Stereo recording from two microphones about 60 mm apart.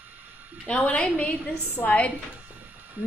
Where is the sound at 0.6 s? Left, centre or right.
Left.